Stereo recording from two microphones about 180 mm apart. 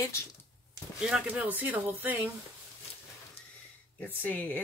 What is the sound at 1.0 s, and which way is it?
Speech, 5° right (ahead or behind).